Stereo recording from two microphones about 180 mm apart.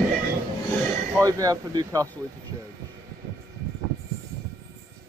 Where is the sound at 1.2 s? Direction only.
20° right (ahead or behind).